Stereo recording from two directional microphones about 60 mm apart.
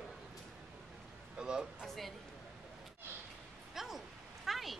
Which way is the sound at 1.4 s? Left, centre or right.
Centre.